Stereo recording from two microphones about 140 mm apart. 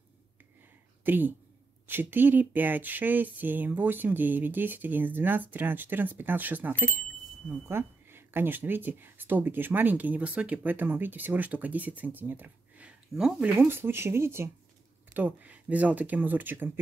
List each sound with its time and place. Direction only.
1.0 s a woman's voice: 15° right (ahead or behind)
13.6 s speech: 15° right (ahead or behind)